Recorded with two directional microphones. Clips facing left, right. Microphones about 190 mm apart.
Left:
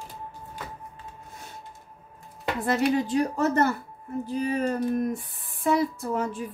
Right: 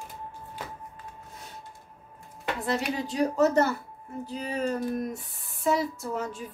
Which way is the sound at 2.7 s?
55° left (ahead or behind).